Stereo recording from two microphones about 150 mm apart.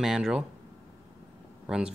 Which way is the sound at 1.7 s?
5° right (ahead or behind).